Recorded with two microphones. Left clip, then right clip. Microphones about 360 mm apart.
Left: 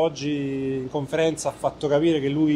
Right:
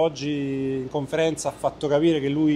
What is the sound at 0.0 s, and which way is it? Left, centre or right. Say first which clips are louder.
Speech: even; right.